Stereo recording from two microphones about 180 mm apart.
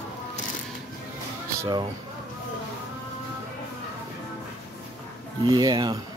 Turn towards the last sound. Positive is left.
turn(degrees=-25)  # may be behind; listen again after turning